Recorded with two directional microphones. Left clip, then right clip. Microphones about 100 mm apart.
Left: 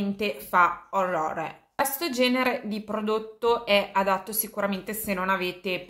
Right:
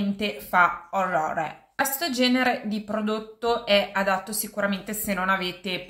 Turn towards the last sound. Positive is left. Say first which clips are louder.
# right 2 dB
turn(degrees=30)  # may be behind; listen again after turning